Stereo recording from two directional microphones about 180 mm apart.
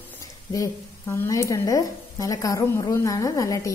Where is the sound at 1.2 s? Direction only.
15° left (ahead or behind).